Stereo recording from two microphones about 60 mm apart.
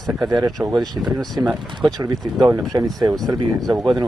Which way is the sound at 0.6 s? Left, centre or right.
Right.